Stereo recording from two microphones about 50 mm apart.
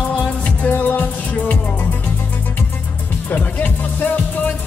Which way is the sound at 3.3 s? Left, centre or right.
Left.